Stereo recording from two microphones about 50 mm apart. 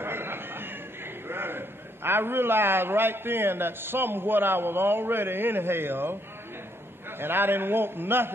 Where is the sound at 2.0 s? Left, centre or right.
Right.